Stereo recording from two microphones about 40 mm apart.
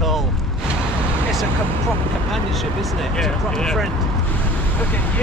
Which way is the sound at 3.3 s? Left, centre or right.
Centre.